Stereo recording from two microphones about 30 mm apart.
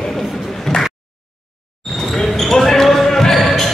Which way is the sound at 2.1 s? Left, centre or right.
Centre.